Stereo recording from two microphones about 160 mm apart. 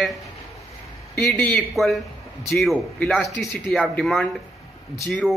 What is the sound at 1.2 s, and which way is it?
Speech, 10° left (ahead or behind).